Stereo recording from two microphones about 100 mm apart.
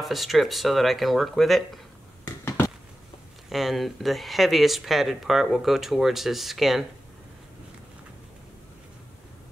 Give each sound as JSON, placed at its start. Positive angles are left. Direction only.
{"t": 0.0, "sound": "speech", "side_deg": 0}
{"t": 2.2, "sound": "a sound", "side_deg": 25}
{"t": 3.4, "sound": "speech", "side_deg": 0}